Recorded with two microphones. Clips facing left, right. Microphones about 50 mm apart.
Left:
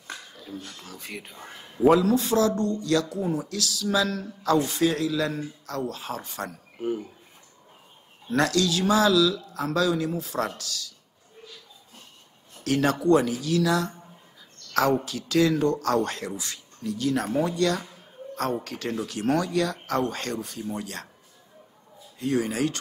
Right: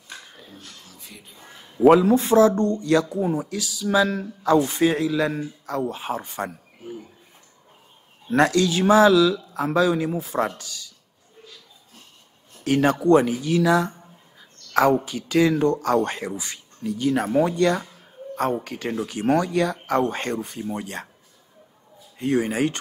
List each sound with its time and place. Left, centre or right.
0.8 s speech: left
1.3 s a man's voice: left
1.9 s speech: right
8.3 s speech: right
12.6 s speech: centre
14.7 s a sound: right
15.0 s speech: centre
22.2 s speech: right